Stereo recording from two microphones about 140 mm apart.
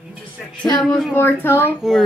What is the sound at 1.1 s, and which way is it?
Speech, 15° left (ahead or behind).